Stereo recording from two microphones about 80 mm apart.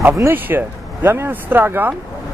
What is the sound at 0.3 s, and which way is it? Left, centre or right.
Speech, right.